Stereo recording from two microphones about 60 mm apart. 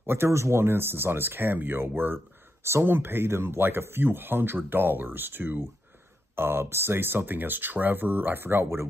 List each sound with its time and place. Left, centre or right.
0.0 s speech: right